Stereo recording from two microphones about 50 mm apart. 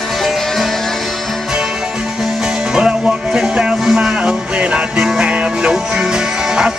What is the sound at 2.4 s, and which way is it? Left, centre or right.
Music, centre.